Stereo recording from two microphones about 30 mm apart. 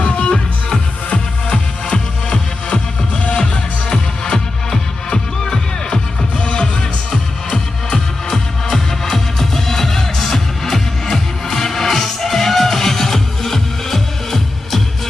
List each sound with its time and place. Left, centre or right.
0.0 s music: left
3.9 s music: left
6.5 s music: left
8.3 s music: centre